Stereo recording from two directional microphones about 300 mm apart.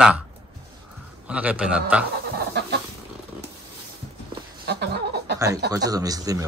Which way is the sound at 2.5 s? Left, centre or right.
Right.